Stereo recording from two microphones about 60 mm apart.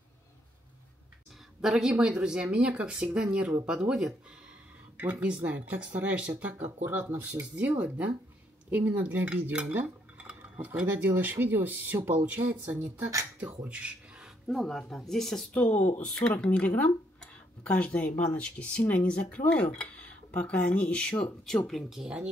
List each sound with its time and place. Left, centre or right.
1.6 s speech: centre
5.4 s cutlery: right
6.6 s speech: right
7.5 s cutlery: right
13.7 s a sound: centre
14.5 s speech: centre
15.5 s speech: left; by 21.8 s centre
21.8 s speech: centre